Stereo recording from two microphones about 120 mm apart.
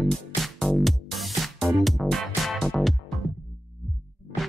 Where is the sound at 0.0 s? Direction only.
Centre (ahead or behind).